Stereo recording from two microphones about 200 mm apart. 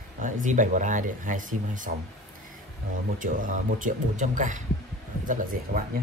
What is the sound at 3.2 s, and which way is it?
Speech, 40° right (ahead or behind).